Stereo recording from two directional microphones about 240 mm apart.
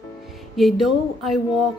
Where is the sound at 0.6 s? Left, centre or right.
Centre.